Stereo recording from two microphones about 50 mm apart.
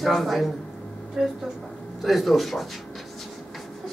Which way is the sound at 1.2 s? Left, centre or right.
Centre.